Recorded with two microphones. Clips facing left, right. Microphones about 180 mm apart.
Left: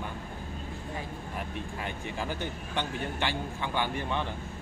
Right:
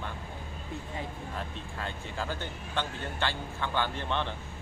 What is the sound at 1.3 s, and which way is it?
Speech, 15° left (ahead or behind).